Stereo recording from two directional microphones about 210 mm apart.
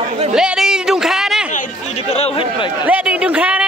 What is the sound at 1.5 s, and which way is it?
Speech, 35° left (ahead or behind).